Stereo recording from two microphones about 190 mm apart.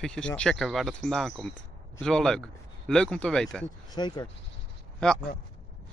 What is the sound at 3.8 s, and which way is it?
Speech, 20° left (ahead or behind).